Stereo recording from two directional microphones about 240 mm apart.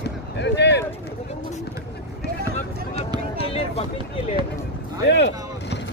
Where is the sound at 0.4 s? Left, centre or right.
Left.